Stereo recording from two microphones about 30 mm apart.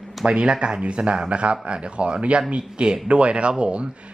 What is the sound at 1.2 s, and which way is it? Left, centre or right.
A man's voice, right.